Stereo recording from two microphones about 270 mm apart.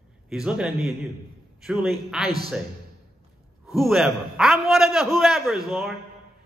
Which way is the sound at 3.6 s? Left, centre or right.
Centre.